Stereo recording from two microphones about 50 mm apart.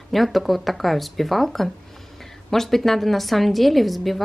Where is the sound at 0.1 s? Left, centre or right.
Centre.